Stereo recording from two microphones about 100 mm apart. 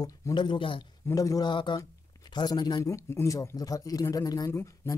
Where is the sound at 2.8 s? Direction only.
30° left (ahead or behind).